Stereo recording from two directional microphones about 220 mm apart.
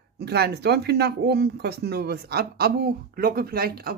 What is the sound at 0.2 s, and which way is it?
Speech, 45° right (ahead or behind).